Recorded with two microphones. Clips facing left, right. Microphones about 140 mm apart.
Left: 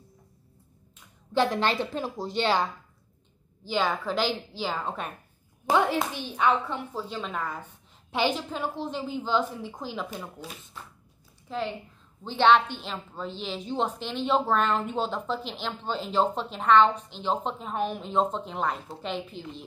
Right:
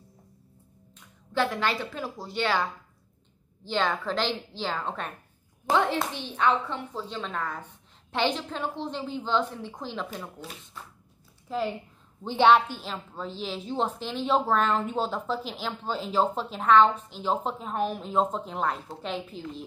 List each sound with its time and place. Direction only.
1.3 s a woman's voice: 20° left (ahead or behind)
3.6 s a woman's voice: 5° left (ahead or behind)